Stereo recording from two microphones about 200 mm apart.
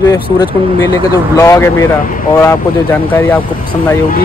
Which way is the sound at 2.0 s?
45° left (ahead or behind).